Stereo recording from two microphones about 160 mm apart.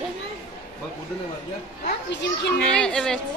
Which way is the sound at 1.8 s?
90° left.